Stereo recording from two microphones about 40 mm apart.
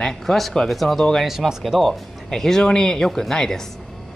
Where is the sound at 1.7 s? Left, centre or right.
Centre.